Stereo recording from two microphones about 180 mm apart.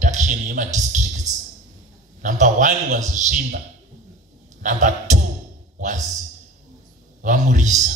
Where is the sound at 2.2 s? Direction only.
45° right (ahead or behind).